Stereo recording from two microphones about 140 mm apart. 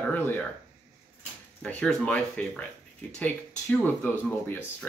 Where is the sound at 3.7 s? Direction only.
10° left (ahead or behind).